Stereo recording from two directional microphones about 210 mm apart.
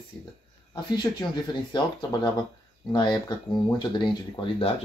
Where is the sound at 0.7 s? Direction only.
20° left (ahead or behind).